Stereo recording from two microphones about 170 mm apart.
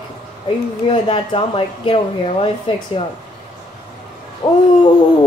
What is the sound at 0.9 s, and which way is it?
Speech, 35° left (ahead or behind).